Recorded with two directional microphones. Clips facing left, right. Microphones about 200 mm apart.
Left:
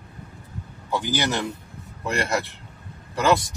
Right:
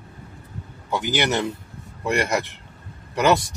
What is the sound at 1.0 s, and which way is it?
Speech, 20° right (ahead or behind).